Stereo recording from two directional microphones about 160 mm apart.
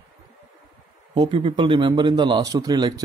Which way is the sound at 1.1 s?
30° right (ahead or behind).